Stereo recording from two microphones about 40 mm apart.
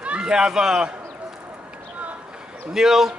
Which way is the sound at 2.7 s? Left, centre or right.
Centre.